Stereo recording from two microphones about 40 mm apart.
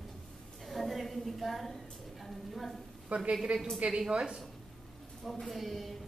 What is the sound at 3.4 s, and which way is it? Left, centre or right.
A woman's voice, centre.